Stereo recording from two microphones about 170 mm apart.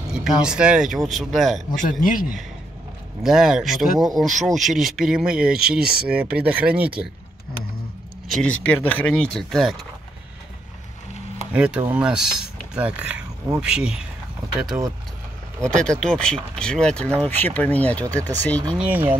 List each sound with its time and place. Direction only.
0.1 s speech: 5° right (ahead or behind)
1.8 s speech: 50° left (ahead or behind)
3.3 s speech: 5° right (ahead or behind)
5.8 s speech: 65° right (ahead or behind)
6.0 s speech: 5° right (ahead or behind)
8.3 s speech: 5° left (ahead or behind)
11.5 s speech: 10° right (ahead or behind)
15.6 s speech: 5° left (ahead or behind)
18.7 s speech: 10° right (ahead or behind)